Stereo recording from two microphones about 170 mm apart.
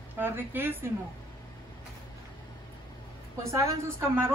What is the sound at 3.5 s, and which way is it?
Speech, 15° right (ahead or behind).